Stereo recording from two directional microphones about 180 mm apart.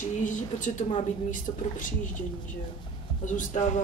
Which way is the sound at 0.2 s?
45° left (ahead or behind).